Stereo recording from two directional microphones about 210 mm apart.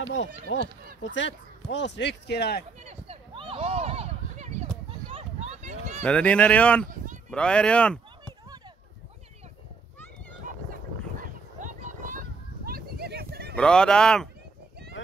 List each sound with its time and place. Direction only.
0.1 s speech: 60° left (ahead or behind)
2.8 s a sound: 30° right (ahead or behind)
5.1 s run: 30° right (ahead or behind)
6.0 s speech: 5° left (ahead or behind)
11.1 s a sound: 40° right (ahead or behind)
13.6 s speech: 5° left (ahead or behind)